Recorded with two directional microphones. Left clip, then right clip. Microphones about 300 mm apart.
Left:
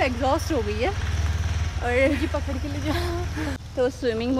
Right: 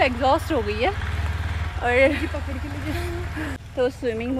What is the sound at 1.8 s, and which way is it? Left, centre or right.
Speech, centre.